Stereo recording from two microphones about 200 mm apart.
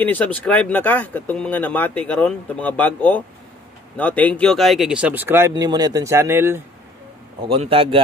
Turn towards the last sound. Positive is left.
turn(degrees=-30)  # may be behind; listen again after turning